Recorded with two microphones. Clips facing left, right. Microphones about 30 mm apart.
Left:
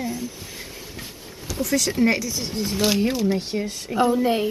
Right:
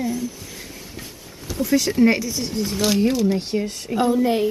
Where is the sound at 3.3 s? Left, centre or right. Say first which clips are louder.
Right 2 dB; centre.